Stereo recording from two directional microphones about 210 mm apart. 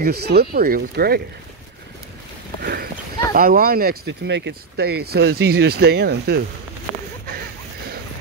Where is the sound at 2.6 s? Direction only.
45° right (ahead or behind).